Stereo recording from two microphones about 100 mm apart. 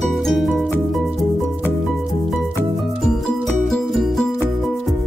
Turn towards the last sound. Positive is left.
turn(degrees=0)  # may be behind; listen again after turning